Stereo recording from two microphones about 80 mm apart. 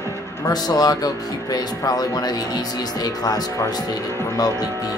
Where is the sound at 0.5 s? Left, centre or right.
Left.